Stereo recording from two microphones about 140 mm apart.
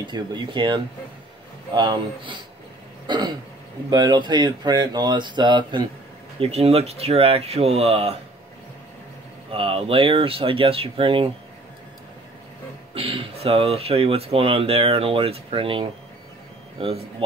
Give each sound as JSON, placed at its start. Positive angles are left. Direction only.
{"t": 0.0, "sound": "speech", "side_deg": -30}
{"t": 6.4, "sound": "speech", "side_deg": -45}
{"t": 9.5, "sound": "speech", "side_deg": -40}
{"t": 12.9, "sound": "speech", "side_deg": -40}